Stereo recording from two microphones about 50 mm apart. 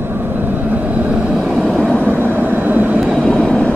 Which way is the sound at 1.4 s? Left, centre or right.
Centre.